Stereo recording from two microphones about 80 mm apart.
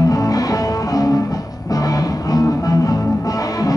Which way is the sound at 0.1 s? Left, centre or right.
Left.